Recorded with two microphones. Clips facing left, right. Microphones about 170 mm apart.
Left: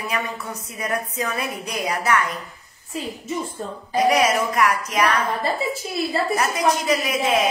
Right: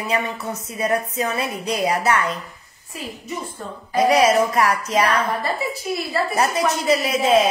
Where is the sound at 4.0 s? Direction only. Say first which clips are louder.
Right 3 dB; 30° right (ahead or behind).